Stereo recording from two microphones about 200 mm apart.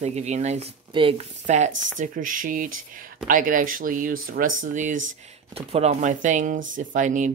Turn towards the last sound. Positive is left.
turn(degrees=-40)  # may be behind; listen again after turning